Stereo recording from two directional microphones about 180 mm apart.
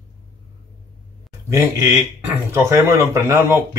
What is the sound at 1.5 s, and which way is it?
Speech, 15° right (ahead or behind).